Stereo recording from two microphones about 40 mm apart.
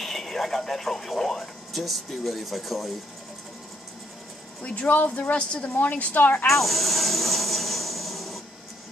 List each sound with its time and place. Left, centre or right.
0.0 s speech: centre
4.6 s speech: left
5.8 s a woman's voice: left
6.4 s vehicle: centre